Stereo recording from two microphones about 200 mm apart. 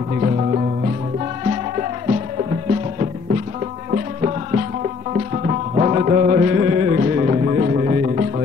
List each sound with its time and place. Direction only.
0.2 s music: 40° right (ahead or behind)
3.9 s music: 35° right (ahead or behind)
7.2 s music: 35° right (ahead or behind)
7.5 s music: 45° right (ahead or behind)